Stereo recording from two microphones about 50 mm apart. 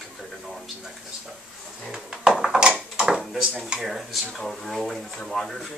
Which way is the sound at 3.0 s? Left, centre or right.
Centre.